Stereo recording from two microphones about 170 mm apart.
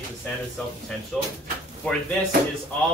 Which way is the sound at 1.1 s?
5° left (ahead or behind).